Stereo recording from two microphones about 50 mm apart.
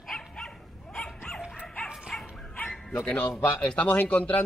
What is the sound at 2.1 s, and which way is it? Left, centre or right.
Bow-wow, centre.